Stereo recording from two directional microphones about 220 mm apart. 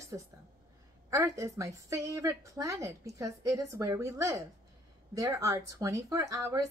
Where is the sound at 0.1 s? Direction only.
15° right (ahead or behind).